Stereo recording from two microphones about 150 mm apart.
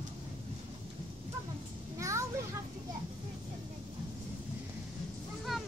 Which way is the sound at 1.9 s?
20° right (ahead or behind).